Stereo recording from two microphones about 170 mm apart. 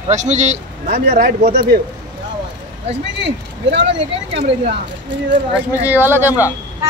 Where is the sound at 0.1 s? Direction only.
45° right (ahead or behind).